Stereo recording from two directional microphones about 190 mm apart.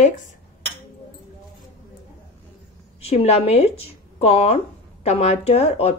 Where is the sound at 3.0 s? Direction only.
35° left (ahead or behind).